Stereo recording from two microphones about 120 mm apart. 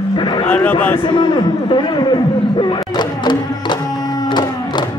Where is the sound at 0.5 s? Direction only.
15° left (ahead or behind).